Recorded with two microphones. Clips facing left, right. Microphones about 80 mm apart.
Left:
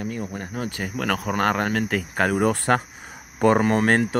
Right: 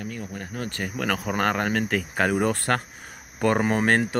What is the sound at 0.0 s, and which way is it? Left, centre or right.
Cricket, left.